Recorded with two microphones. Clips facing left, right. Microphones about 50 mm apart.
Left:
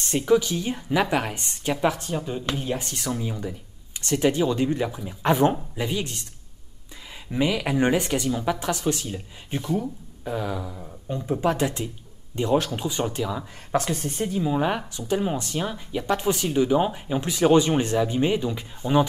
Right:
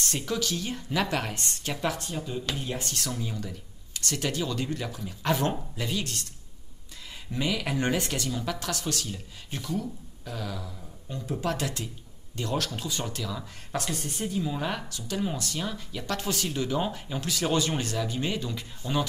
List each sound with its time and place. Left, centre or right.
0.0 s speech: left
7.2 s speech: left